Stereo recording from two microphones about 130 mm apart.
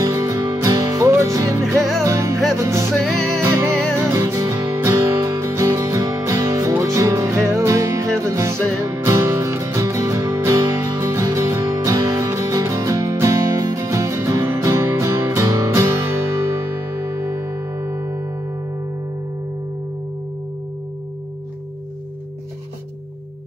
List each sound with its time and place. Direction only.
0.0 s music: 25° right (ahead or behind)
17.8 s music: 25° right (ahead or behind)